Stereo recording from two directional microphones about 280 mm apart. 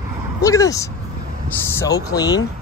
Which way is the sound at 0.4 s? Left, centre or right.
Centre.